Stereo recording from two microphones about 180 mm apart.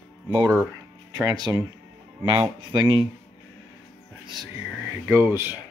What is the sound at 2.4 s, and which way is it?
Speech, 25° right (ahead or behind).